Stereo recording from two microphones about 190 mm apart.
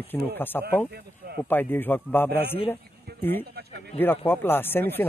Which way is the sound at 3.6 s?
55° right (ahead or behind).